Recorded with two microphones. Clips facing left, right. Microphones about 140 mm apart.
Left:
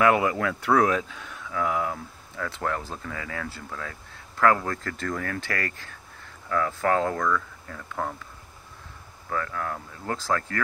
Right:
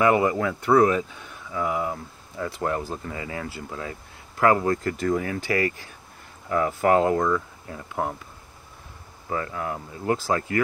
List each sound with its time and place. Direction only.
0.0 s speech: 5° right (ahead or behind)
9.3 s speech: 20° right (ahead or behind)